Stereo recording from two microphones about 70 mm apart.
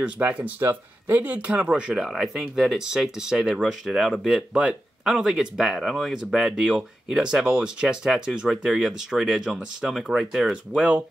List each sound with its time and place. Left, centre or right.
0.0 s speech: centre